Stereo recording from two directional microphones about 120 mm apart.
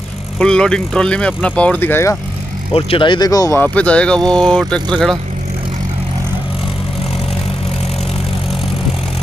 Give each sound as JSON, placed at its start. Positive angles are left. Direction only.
{"t": 0.4, "sound": "speech", "side_deg": 5}
{"t": 2.7, "sound": "speech", "side_deg": 45}
{"t": 3.3, "sound": "speech", "side_deg": 30}
{"t": 3.5, "sound": "speech", "side_deg": 10}